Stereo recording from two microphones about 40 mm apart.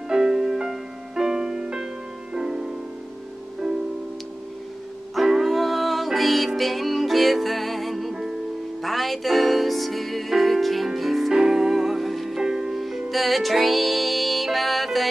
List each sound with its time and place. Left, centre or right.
0.1 s music: centre
5.2 s music: centre
11.3 s music: centre
12.4 s music: centre
12.8 s music: centre